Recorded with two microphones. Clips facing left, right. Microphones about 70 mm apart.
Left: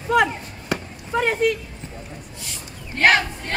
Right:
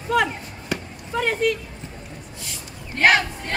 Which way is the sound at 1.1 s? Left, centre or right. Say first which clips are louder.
Left 2 dB; left.